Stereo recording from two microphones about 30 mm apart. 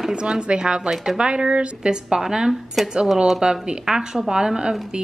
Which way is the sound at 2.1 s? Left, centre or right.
Right.